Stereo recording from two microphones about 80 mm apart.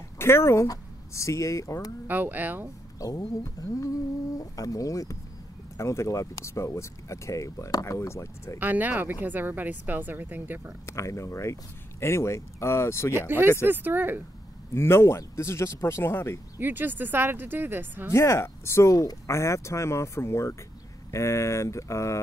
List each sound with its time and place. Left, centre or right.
0.2 s speech: left
2.0 s speech: right
3.0 s speech: left
8.5 s speech: right
10.9 s speech: left
13.7 s speech: right
14.7 s speech: left
16.5 s speech: right
18.1 s speech: left